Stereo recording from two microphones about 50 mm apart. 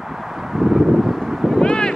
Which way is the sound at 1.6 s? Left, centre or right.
Centre.